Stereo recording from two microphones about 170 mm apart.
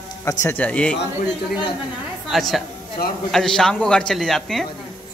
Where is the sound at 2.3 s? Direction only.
Centre (ahead or behind).